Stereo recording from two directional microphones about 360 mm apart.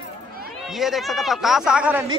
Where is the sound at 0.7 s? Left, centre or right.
Centre.